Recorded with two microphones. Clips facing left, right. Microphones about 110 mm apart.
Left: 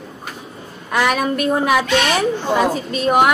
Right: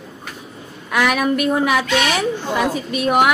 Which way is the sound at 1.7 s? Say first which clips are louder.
Left 2 dB; centre (ahead or behind).